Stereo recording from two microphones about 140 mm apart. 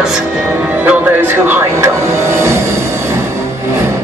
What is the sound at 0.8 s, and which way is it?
Speech, 15° right (ahead or behind).